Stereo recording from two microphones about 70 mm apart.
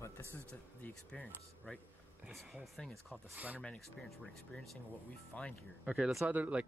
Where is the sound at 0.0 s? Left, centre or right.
Left.